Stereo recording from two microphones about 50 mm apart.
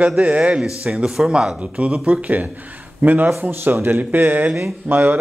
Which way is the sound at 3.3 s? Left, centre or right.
Right.